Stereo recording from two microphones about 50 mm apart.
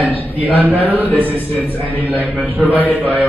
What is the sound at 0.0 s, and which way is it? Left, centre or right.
A man's voice, right.